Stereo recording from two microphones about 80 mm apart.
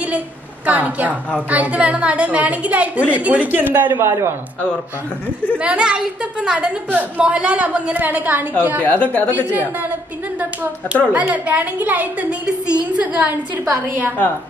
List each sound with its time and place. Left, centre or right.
0.7 s a woman's voice: centre
4.0 s speech: right
5.6 s a woman's voice: centre
8.8 s a woman's voice: centre
10.4 s a woman's voice: right